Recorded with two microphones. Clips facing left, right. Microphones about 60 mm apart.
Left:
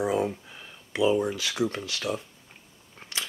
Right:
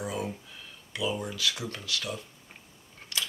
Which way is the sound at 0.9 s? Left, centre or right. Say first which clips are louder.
Left 8 dB; left.